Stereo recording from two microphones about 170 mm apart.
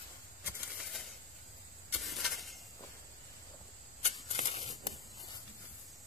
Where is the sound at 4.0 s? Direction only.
40° left (ahead or behind).